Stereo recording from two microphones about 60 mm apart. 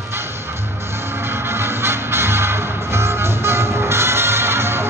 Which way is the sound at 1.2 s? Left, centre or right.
Right.